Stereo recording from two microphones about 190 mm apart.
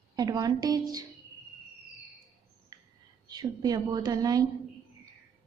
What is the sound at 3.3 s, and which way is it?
A woman's voice, 20° right (ahead or behind).